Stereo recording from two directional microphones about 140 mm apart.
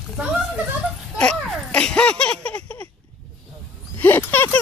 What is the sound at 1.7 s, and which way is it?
Laughter, 10° left (ahead or behind).